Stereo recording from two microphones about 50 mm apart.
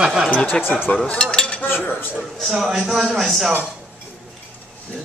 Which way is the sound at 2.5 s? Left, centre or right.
Centre.